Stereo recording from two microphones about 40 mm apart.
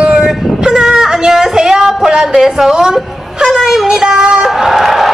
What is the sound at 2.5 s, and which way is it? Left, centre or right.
A woman's voice, centre.